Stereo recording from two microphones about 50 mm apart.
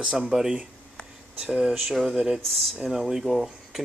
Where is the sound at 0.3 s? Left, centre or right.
Centre.